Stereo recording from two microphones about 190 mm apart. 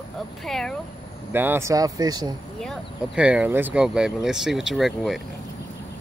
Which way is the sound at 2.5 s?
Centre (ahead or behind).